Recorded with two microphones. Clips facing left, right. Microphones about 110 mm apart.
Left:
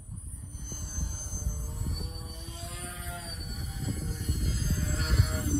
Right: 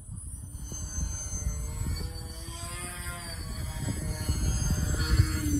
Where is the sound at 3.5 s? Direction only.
90° right; by 4.5 s 65° right (ahead or behind).